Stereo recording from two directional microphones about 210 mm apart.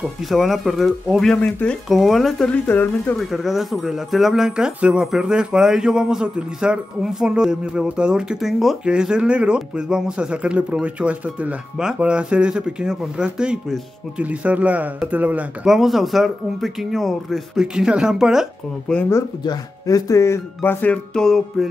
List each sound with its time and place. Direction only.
0.0 s speech: centre (ahead or behind)